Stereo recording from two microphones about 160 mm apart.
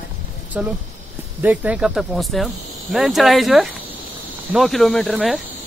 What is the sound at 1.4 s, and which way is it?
Speech, 10° right (ahead or behind).